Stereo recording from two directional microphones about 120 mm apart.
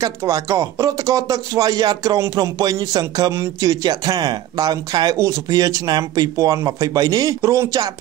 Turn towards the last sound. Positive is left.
turn(degrees=-25)  # may be behind; listen again after turning